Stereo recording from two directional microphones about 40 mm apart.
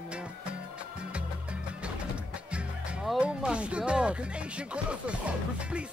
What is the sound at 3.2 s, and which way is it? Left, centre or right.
Speech, right.